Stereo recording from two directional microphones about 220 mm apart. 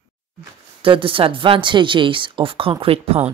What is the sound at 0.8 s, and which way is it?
Speech, 25° right (ahead or behind).